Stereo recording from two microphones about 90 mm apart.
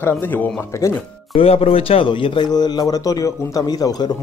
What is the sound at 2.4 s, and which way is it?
A man's voice, 50° left (ahead or behind).